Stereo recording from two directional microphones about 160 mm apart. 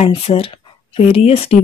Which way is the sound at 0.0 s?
35° left (ahead or behind).